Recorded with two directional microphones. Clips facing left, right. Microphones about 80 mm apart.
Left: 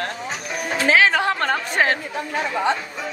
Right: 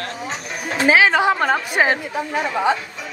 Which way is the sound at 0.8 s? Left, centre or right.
Centre.